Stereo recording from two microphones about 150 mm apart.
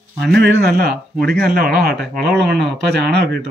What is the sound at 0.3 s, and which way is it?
Speech, 90° right.